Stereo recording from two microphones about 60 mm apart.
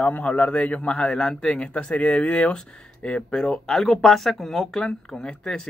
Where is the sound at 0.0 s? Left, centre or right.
Left.